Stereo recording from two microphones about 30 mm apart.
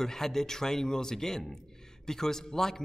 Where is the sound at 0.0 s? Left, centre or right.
Centre.